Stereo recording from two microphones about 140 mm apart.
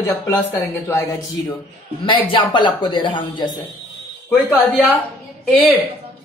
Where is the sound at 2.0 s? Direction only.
35° left (ahead or behind).